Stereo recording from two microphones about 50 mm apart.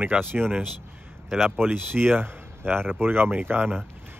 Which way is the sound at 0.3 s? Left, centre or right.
Right.